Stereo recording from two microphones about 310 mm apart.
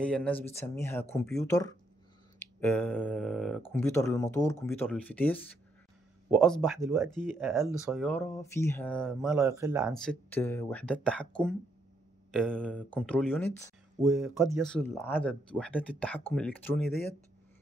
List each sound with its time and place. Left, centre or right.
0.0 s speech: centre
9.3 s speech: centre
9.9 s speech: centre
12.3 s speech: centre